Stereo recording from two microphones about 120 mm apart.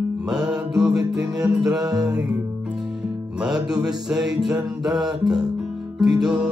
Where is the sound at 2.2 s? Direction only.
10° right (ahead or behind).